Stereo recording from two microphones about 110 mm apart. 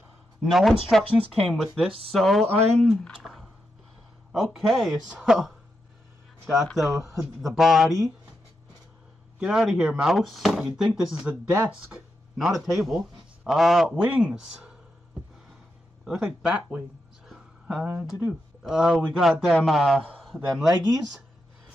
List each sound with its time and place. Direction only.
0.4 s speech: centre (ahead or behind)
3.2 s a sound: centre (ahead or behind)
4.6 s speech: centre (ahead or behind)
6.5 s speech: centre (ahead or behind)
6.9 s speech: 30° right (ahead or behind)
7.4 s speech: centre (ahead or behind)
9.4 s speech: 5° right (ahead or behind)
12.4 s a man's voice: centre (ahead or behind)
16.1 s speech: 5° right (ahead or behind)
17.3 s a sound: 5° right (ahead or behind)
18.2 s a man's voice: 5° right (ahead or behind)